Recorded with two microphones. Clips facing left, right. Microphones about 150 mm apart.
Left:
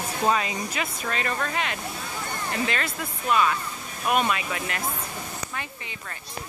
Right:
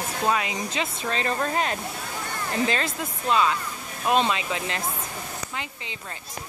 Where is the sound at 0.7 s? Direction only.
25° right (ahead or behind).